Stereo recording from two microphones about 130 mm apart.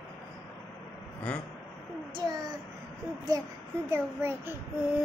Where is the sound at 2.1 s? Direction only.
35° right (ahead or behind).